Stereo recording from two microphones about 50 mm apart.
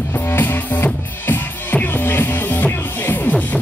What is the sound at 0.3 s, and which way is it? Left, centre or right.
Music, left.